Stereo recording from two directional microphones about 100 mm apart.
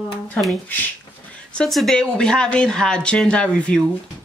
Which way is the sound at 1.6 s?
5° left (ahead or behind).